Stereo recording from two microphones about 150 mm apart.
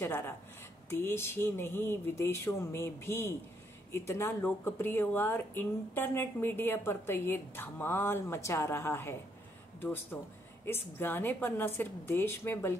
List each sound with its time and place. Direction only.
0.0 s speech: 15° left (ahead or behind)
10.1 s speech: 10° left (ahead or behind)